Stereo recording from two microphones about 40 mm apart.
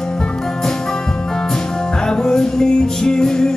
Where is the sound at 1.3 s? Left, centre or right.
Centre.